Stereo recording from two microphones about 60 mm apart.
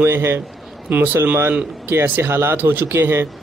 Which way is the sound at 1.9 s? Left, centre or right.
Right.